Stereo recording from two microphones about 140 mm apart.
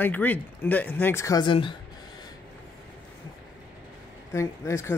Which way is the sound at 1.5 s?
35° left (ahead or behind).